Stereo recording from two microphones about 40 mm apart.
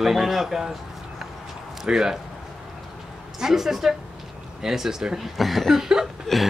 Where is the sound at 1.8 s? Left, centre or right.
Centre.